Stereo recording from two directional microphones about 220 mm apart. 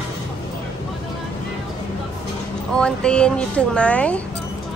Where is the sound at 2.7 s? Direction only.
5° left (ahead or behind).